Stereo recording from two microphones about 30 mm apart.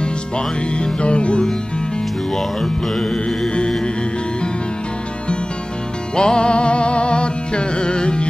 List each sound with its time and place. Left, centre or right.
0.7 s music: left
2.3 s mantra: centre
6.1 s music: left